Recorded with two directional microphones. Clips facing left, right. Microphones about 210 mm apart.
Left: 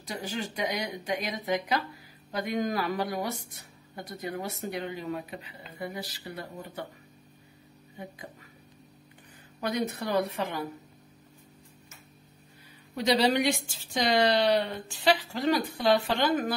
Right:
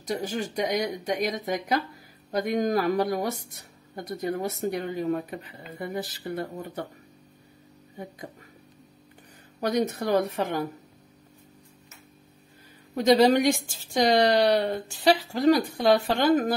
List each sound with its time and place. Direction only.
0.0 s speech: 45° right (ahead or behind)
9.6 s speech: 40° right (ahead or behind)
12.9 s a woman's voice: 45° right (ahead or behind)